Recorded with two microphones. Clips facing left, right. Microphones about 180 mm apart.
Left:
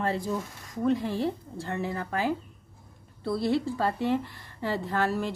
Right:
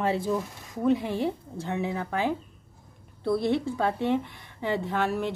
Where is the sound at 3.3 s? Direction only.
20° right (ahead or behind).